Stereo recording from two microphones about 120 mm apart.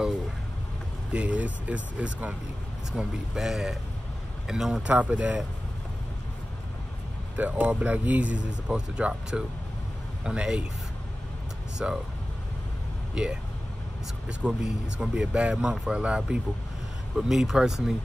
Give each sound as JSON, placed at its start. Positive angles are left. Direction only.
{"t": 1.1, "sound": "speech", "side_deg": -10}
{"t": 7.3, "sound": "speech", "side_deg": -15}
{"t": 11.8, "sound": "speech", "side_deg": -10}
{"t": 13.1, "sound": "speech", "side_deg": -5}
{"t": 14.4, "sound": "speech", "side_deg": -5}